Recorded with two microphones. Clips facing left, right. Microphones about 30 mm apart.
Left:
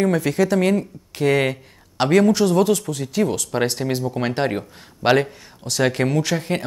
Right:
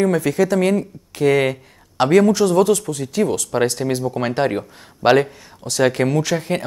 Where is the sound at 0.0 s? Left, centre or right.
Centre.